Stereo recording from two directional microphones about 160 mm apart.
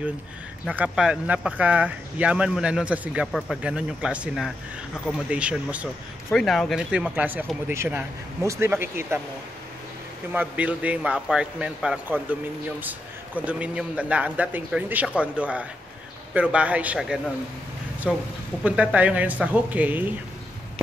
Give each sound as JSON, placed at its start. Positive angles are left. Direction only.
{"t": 0.7, "sound": "speech", "side_deg": -5}
{"t": 6.3, "sound": "speech", "side_deg": 5}
{"t": 10.3, "sound": "speech", "side_deg": -10}